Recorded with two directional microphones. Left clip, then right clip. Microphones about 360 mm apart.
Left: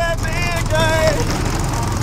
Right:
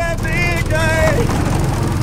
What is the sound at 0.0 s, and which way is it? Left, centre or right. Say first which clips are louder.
Vehicle: right 2 dB; centre.